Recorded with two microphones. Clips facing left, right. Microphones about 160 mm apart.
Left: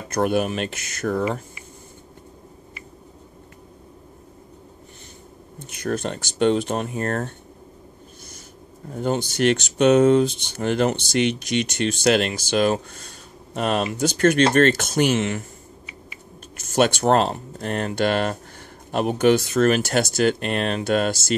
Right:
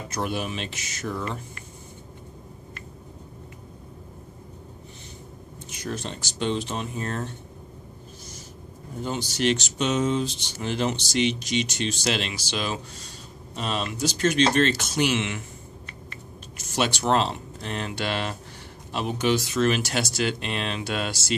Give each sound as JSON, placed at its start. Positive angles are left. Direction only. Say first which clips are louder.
{"t": 0.1, "sound": "speech", "louder": "left 9 dB", "side_deg": 50}
{"t": 5.7, "sound": "speech", "louder": "left 7 dB", "side_deg": 55}
{"t": 9.0, "sound": "speech", "louder": "left 5 dB", "side_deg": 55}
{"t": 16.5, "sound": "speech", "louder": "left 7 dB", "side_deg": 50}